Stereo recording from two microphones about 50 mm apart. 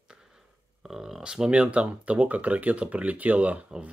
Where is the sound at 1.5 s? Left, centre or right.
Right.